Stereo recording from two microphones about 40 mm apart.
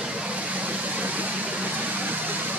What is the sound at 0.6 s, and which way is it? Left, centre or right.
Vehicle, right.